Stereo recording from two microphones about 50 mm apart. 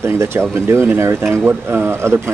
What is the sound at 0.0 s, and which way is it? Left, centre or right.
Speech, right.